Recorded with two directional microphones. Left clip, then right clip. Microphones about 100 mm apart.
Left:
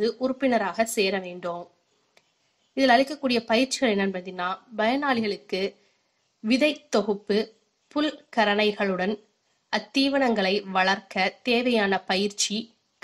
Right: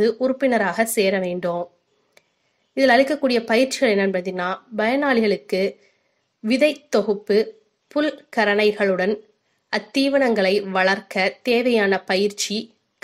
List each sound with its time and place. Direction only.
0.0 s a woman's voice: 35° right (ahead or behind)
2.2 s a sound: 40° right (ahead or behind)
2.7 s a woman's voice: 40° right (ahead or behind)